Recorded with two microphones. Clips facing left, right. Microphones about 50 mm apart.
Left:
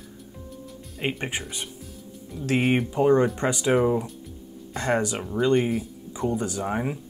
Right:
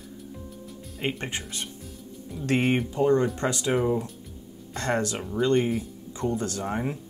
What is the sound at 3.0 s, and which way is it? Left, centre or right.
Speech, left.